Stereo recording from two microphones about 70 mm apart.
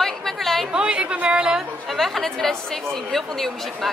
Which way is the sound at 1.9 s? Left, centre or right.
Centre.